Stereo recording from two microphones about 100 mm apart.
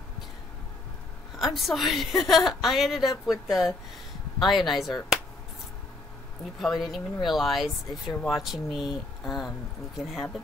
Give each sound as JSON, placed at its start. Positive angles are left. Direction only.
{"t": 1.4, "sound": "a woman's voice", "side_deg": 0}
{"t": 6.6, "sound": "a woman's voice", "side_deg": 0}